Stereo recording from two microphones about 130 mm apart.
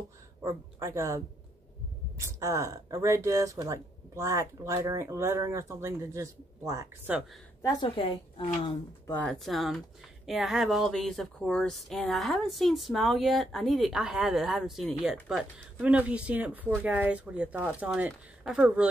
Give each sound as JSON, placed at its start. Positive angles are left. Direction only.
{"t": 0.4, "sound": "speech", "side_deg": -25}
{"t": 7.1, "sound": "speech", "side_deg": -10}
{"t": 7.9, "sound": "speech", "side_deg": 45}
{"t": 9.1, "sound": "speech", "side_deg": 10}